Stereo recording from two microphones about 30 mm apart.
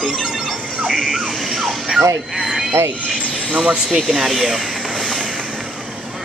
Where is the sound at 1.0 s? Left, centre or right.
Centre.